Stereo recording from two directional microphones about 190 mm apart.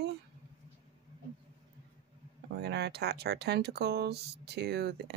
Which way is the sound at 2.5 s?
60° right (ahead or behind).